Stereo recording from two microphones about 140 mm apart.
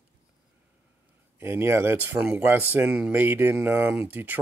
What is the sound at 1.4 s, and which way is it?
Speech, 15° right (ahead or behind).